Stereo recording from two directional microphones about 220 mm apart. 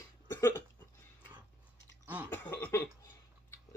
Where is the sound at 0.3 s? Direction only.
10° left (ahead or behind).